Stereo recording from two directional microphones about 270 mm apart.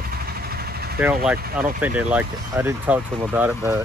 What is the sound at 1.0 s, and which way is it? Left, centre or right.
Speech, centre.